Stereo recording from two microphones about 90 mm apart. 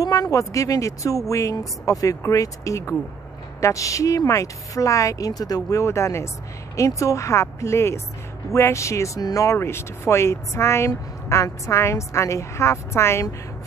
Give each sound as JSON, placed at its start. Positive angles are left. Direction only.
{"t": 0.0, "sound": "speech", "side_deg": 40}